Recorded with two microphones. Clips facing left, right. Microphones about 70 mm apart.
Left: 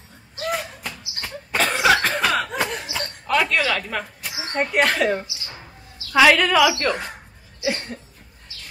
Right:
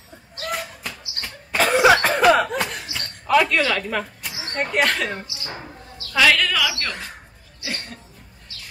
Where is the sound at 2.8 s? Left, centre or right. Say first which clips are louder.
Left 4 dB; centre.